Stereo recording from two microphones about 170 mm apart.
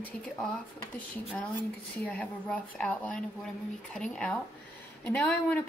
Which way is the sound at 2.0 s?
10° left (ahead or behind).